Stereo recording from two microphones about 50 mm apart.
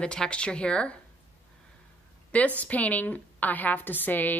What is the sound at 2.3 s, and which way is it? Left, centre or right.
A woman's voice, left.